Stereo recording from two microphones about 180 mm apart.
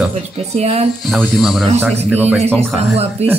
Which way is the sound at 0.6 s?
35° right (ahead or behind).